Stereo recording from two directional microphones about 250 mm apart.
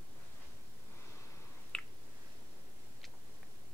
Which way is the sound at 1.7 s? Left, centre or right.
Centre.